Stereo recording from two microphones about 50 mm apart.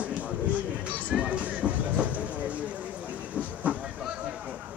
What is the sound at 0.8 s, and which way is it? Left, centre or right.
Music, right.